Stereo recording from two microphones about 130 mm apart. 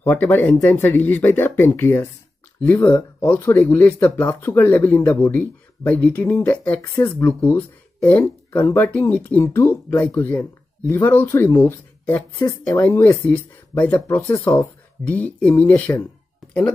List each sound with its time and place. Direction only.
0.0 s speech: 15° left (ahead or behind)